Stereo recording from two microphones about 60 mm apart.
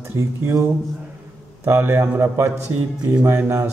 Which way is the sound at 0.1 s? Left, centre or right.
Right.